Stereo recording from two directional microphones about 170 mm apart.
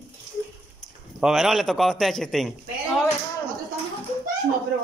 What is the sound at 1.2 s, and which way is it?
A man's voice, centre (ahead or behind).